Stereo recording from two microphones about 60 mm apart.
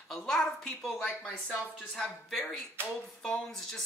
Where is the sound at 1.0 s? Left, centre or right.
Centre.